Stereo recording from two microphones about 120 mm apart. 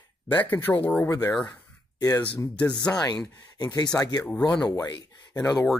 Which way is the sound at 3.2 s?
30° left (ahead or behind).